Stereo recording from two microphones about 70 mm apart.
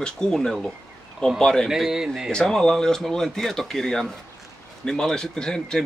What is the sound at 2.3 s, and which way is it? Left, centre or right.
Speech, centre.